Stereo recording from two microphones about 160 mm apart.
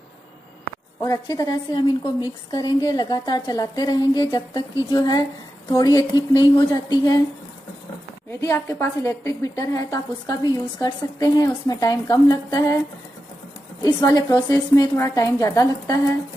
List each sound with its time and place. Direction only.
1.0 s a woman's voice: 20° left (ahead or behind)
8.3 s a woman's voice: 15° left (ahead or behind)
13.8 s a woman's voice: 25° left (ahead or behind)